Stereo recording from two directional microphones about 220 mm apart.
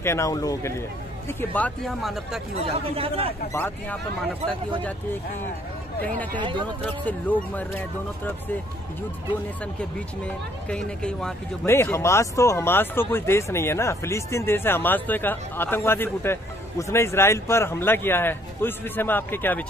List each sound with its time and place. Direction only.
0.0 s speech: 15° left (ahead or behind)
2.6 s speech: 25° right (ahead or behind)
3.5 s speech: 10° left (ahead or behind)
4.4 s speech: 20° right (ahead or behind)
6.3 s speech: 20° right (ahead or behind)
6.8 s speech: 5° left (ahead or behind)
10.7 s speech: 5° left (ahead or behind)